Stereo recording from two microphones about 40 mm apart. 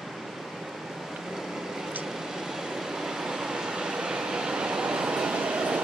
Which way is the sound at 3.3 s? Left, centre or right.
Centre.